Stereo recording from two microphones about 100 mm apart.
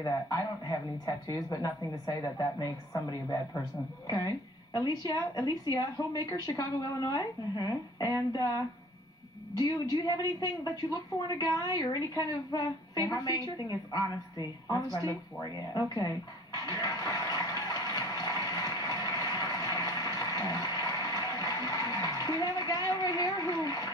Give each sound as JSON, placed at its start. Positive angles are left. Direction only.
{"t": 0.0, "sound": "a woman's voice", "side_deg": 40}
{"t": 4.7, "sound": "a woman's voice", "side_deg": 40}
{"t": 10.1, "sound": "a woman's voice", "side_deg": 40}
{"t": 16.6, "sound": "a sound", "side_deg": 40}
{"t": 22.8, "sound": "a woman's voice", "side_deg": 40}